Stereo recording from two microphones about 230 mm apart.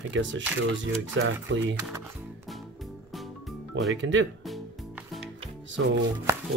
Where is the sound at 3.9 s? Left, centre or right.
Right.